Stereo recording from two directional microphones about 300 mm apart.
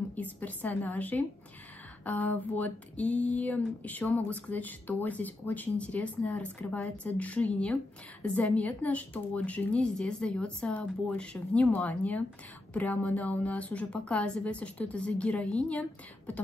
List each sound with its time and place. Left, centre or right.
0.1 s speech: centre